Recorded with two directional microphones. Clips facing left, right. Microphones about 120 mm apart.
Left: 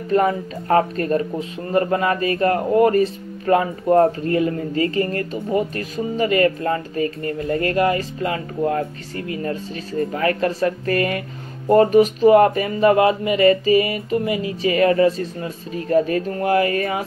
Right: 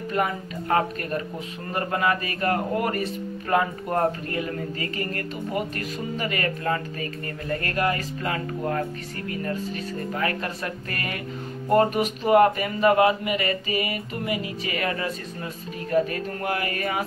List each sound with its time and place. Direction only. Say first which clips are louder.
0.1 s speech: left 8 dB; 35° left (ahead or behind)